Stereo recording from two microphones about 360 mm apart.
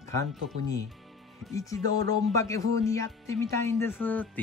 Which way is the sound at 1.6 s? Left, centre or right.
Centre.